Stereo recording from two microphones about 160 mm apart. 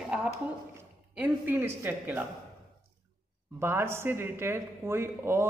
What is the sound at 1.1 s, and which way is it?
Speech, 10° right (ahead or behind).